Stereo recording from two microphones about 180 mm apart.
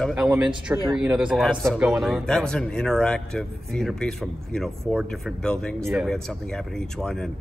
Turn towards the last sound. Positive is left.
turn(degrees=5)  # may be behind; listen again after turning